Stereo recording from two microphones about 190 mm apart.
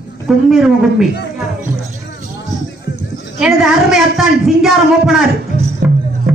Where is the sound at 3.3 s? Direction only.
5° right (ahead or behind).